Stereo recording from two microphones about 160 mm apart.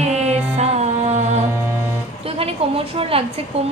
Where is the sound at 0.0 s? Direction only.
40° right (ahead or behind).